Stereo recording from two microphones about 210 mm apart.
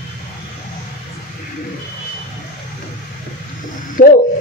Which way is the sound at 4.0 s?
40° left (ahead or behind).